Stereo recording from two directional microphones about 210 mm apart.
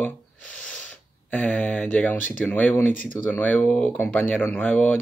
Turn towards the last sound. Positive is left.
turn(degrees=10)  # may be behind; listen again after turning